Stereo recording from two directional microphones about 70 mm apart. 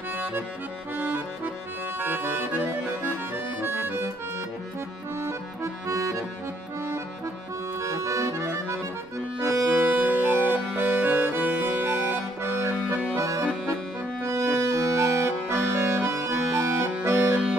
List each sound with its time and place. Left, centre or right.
0.9 s accordion: right
5.2 s accordion: right
7.8 s accordion: right
9.7 s music: right
13.2 s accordion: right
14.2 s music: right
17.0 s organ: right